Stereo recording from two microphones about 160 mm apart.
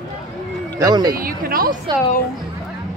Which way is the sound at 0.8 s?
25° right (ahead or behind).